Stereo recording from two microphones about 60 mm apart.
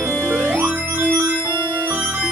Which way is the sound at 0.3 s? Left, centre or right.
Right.